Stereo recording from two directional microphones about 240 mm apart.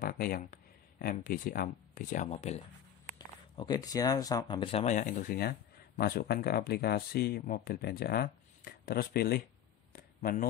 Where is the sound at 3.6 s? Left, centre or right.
Centre.